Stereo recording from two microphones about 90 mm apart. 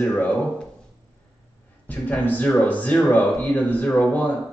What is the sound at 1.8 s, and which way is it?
Speech, 20° left (ahead or behind).